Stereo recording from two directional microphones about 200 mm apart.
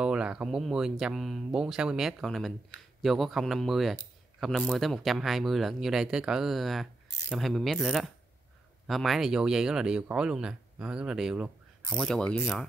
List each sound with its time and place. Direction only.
0.0 s speech: 5° right (ahead or behind)